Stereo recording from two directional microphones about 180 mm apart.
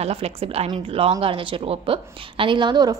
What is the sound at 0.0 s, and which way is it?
A woman's voice, 35° right (ahead or behind).